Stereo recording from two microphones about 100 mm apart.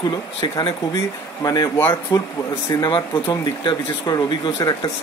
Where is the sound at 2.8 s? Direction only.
60° left (ahead or behind).